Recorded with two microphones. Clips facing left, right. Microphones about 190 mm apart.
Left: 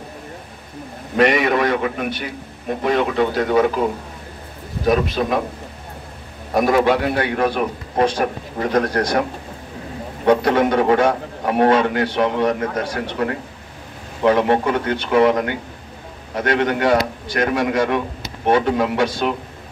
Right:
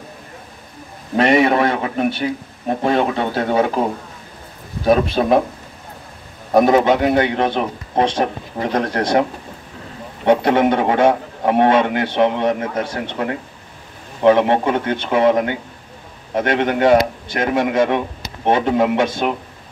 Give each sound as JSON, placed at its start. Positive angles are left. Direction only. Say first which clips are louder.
{"t": 1.1, "sound": "a man's voice", "louder": "right 2 dB", "side_deg": -25}
{"t": 4.8, "sound": "speech", "louder": "right 3 dB", "side_deg": -30}
{"t": 6.5, "sound": "a man's voice", "louder": "right 3 dB", "side_deg": -25}
{"t": 10.2, "sound": "a man's voice", "louder": "right 1 dB", "side_deg": -25}